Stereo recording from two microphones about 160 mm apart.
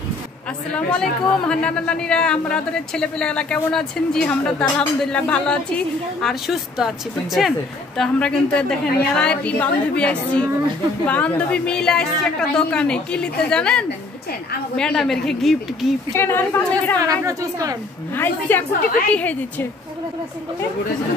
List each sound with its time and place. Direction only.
0.7 s speech: 5° left (ahead or behind)
8.0 s a woman's voice: 5° left (ahead or behind)
16.2 s a woman's voice: 15° left (ahead or behind)
17.3 s a woman's voice: 20° right (ahead or behind)
18.1 s a woman's voice: 15° left (ahead or behind)